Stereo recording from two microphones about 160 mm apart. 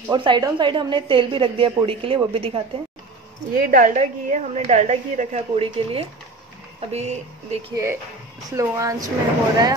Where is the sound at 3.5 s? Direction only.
65° right (ahead or behind); by 7.2 s 40° right (ahead or behind).